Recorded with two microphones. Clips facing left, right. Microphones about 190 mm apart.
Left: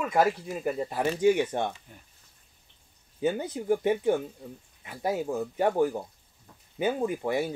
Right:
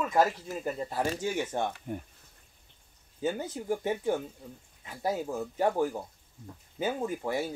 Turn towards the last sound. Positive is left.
turn(degrees=20)  # may be behind; listen again after turning